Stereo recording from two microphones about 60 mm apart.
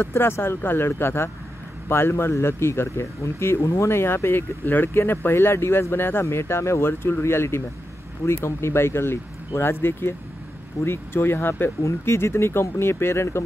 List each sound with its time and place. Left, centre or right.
0.0 s speech: left